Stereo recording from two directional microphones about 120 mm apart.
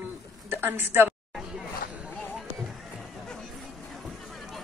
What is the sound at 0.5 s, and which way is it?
Speech, 15° right (ahead or behind).